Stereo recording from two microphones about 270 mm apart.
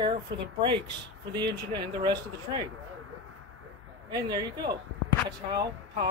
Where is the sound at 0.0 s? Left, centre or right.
Centre.